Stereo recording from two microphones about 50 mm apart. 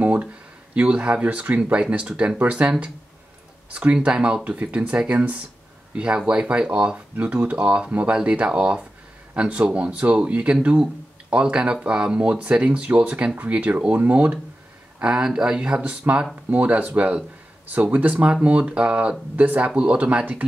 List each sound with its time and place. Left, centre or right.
0.0 s speech: right
16.4 s speech: right
19.3 s speech: right
19.7 s speech: right